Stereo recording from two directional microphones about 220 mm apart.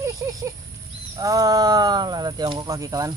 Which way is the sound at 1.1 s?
15° right (ahead or behind).